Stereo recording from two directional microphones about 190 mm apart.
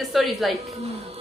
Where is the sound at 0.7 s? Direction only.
35° right (ahead or behind).